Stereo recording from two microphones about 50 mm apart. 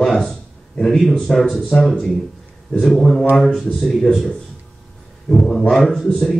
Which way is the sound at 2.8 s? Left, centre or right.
Centre.